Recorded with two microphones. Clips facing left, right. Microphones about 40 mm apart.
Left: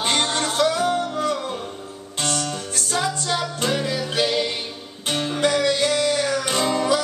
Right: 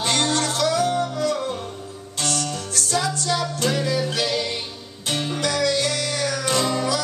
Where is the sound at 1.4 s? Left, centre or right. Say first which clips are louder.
Right 1 dB; centre.